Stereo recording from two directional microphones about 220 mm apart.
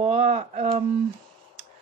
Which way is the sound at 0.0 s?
30° right (ahead or behind).